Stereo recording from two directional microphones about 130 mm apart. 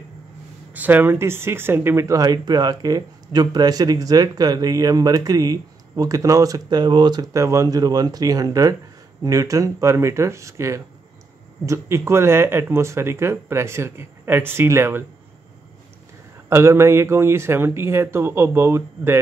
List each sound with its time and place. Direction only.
0.7 s speech: 15° right (ahead or behind)
16.4 s speech: 20° right (ahead or behind)